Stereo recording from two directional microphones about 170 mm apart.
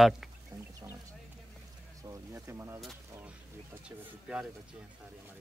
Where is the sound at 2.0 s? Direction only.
15° right (ahead or behind).